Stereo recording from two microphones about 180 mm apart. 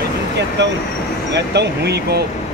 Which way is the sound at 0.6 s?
75° right (ahead or behind).